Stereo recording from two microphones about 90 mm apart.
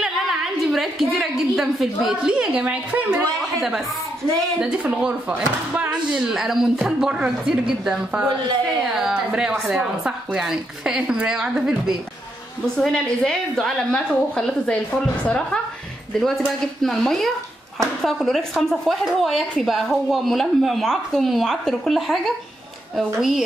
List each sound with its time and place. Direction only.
0.0 s a woman's voice: 5° right (ahead or behind)
2.4 s a woman's voice: 15° right (ahead or behind)
4.6 s a woman's voice: 10° right (ahead or behind)
6.1 s a woman's voice: 5° right (ahead or behind)
12.7 s a woman's voice: 5° left (ahead or behind)
16.8 s a woman's voice: 5° left (ahead or behind)